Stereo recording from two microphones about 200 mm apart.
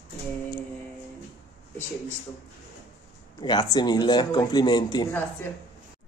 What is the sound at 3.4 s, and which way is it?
Speech, 20° left (ahead or behind).